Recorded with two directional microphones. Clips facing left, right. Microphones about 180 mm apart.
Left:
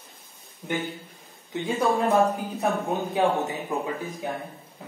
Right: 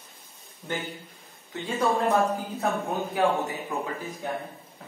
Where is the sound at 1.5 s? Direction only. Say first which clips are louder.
Left 2 dB; 15° left (ahead or behind).